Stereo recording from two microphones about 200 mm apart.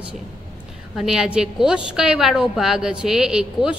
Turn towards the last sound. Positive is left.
turn(degrees=-5)  # may be behind; listen again after turning